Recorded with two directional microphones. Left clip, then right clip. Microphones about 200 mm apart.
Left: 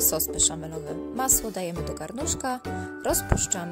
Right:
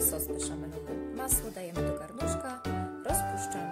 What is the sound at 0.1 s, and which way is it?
Speech, 50° left (ahead or behind).